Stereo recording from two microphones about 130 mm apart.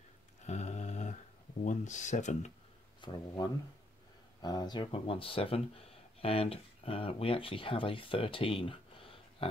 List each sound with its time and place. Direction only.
0.5 s a sound: 65° left (ahead or behind)
1.6 s speech: 65° left (ahead or behind)
3.0 s speech: 35° left (ahead or behind)